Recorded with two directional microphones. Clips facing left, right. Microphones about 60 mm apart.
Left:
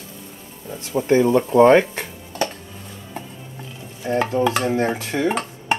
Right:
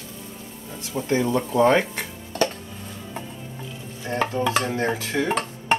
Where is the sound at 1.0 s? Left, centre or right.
Left.